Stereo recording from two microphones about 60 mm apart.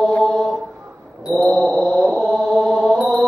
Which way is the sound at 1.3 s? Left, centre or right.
Centre.